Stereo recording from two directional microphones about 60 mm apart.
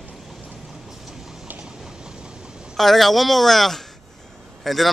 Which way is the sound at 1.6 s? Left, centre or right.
Centre.